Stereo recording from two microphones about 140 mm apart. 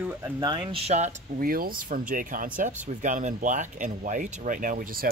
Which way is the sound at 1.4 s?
90° right.